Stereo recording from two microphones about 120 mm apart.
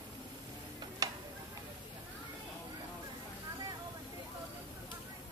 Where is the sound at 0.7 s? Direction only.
30° right (ahead or behind).